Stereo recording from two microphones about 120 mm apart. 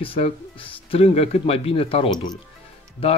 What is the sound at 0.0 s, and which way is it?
Speech, 50° left (ahead or behind).